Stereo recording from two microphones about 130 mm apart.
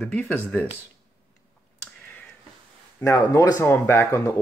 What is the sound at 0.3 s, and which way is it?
Speech, 15° left (ahead or behind).